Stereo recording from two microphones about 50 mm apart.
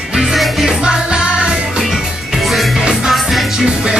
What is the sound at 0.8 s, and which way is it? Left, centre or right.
Music, centre.